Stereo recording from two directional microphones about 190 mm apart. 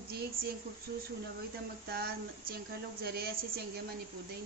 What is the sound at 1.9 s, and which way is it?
A woman's voice, 55° right (ahead or behind).